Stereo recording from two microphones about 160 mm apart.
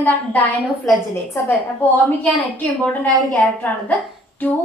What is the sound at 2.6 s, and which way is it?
A woman's voice, 5° left (ahead or behind).